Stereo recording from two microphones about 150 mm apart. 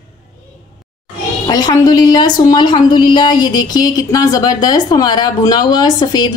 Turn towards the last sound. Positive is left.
turn(degrees=25)  # may be behind; listen again after turning